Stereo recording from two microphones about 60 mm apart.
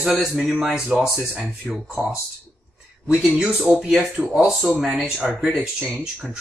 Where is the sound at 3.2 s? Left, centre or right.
Centre.